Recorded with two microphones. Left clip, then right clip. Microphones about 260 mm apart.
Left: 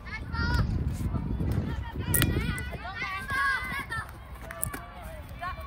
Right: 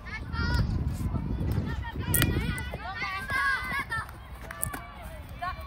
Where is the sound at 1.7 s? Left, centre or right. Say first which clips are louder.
Even; centre.